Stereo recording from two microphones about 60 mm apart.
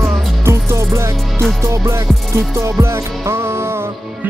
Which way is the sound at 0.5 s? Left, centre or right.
Right.